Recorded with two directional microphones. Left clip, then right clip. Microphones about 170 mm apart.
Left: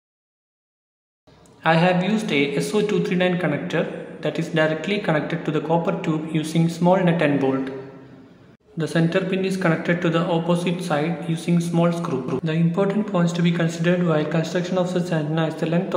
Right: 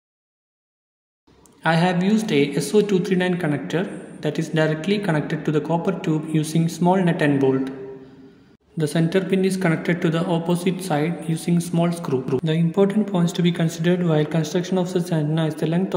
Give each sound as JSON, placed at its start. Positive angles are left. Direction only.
{"t": 1.6, "sound": "a man's voice", "side_deg": -40}
{"t": 8.7, "sound": "a man's voice", "side_deg": -40}